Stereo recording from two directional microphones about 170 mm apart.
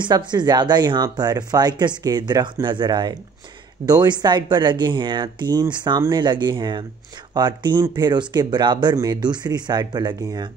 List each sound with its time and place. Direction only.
0.0 s speech: 25° right (ahead or behind)